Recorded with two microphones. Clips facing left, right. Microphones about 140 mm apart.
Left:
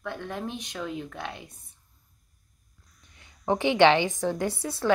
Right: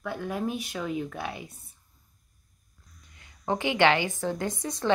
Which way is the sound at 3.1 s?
20° left (ahead or behind).